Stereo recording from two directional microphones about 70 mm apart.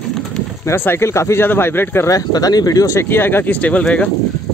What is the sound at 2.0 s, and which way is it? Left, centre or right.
Speech, left.